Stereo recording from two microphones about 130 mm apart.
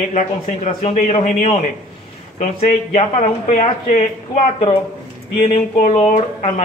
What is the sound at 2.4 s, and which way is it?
A man's voice, 65° left (ahead or behind).